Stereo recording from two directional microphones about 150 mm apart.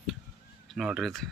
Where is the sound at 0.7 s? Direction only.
5° right (ahead or behind).